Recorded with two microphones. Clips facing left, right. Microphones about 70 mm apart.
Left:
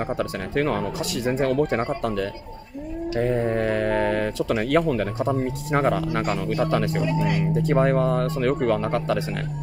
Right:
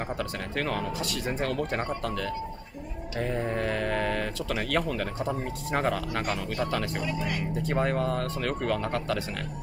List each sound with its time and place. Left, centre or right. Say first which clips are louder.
0.2 s speech: left 7 dB; left
3.5 s speech: left 6 dB; left